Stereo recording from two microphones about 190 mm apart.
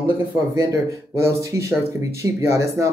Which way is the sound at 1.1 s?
15° right (ahead or behind).